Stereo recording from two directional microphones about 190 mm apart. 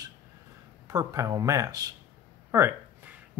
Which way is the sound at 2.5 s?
10° right (ahead or behind).